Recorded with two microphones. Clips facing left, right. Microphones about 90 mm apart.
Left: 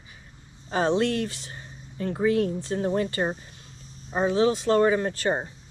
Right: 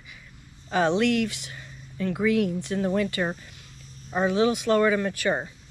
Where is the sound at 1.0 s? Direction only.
30° left (ahead or behind).